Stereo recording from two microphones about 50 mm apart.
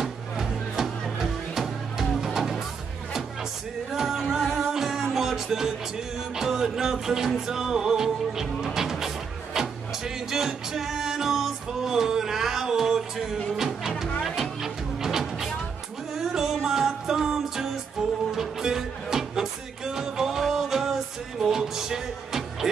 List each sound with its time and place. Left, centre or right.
0.0 s music: centre
3.9 s music: centre
8.6 s speech: centre
14.2 s music: centre